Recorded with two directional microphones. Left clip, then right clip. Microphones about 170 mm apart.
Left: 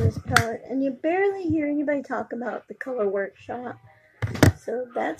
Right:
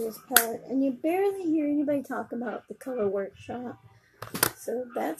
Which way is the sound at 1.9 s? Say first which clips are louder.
Left 3 dB; 15° right (ahead or behind).